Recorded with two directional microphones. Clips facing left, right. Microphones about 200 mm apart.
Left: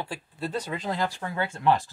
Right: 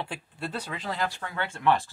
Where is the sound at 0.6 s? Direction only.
20° left (ahead or behind).